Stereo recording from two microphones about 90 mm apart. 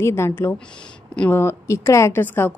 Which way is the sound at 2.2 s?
20° left (ahead or behind).